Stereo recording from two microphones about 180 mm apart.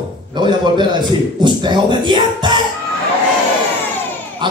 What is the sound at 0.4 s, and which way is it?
Speech, 25° right (ahead or behind).